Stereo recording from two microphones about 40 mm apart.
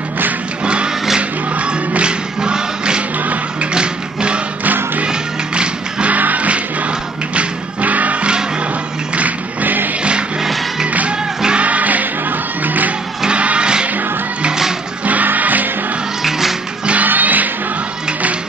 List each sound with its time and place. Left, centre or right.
1.6 s music: right
6.1 s music: right
10.9 s music: right
13.3 s music: right
15.0 s music: right
16.3 s music: centre
17.0 s music: right